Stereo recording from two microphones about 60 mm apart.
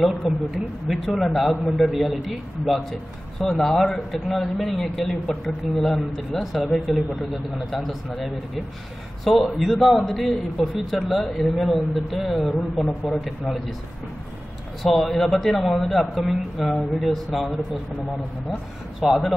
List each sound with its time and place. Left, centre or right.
0.2 s a man's voice: centre
9.2 s a man's voice: centre
14.8 s a man's voice: centre
18.9 s a man's voice: centre